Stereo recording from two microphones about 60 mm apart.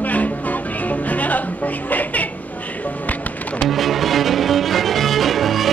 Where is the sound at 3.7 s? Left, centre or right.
Centre.